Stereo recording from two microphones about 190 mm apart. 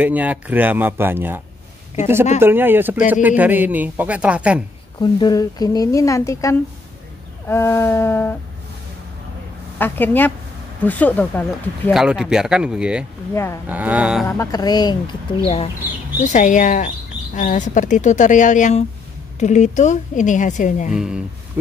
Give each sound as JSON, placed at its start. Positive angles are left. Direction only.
{"t": 0.0, "sound": "a man's voice", "side_deg": -10}
{"t": 2.4, "sound": "a man's voice", "side_deg": -10}
{"t": 5.2, "sound": "speech", "side_deg": 20}
{"t": 9.8, "sound": "speech", "side_deg": 10}
{"t": 11.9, "sound": "speech", "side_deg": -5}
{"t": 13.3, "sound": "speech", "side_deg": 15}
{"t": 13.7, "sound": "a man's voice", "side_deg": -10}
{"t": 14.2, "sound": "a woman's voice", "side_deg": 15}
{"t": 16.2, "sound": "a woman's voice", "side_deg": 40}
{"t": 20.9, "sound": "speech", "side_deg": -5}